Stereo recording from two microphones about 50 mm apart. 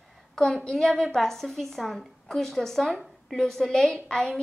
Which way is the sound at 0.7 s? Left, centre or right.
Centre.